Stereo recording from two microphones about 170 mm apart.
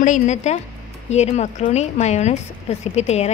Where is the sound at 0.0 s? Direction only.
45° left (ahead or behind).